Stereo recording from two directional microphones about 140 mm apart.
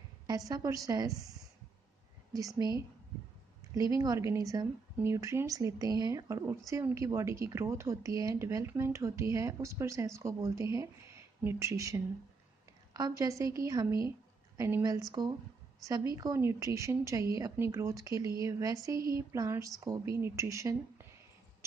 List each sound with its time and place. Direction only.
0.5 s speech: 25° right (ahead or behind)
2.3 s speech: 25° right (ahead or behind)
3.7 s speech: 25° right (ahead or behind)